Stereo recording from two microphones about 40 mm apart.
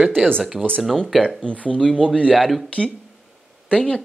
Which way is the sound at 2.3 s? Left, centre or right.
Centre.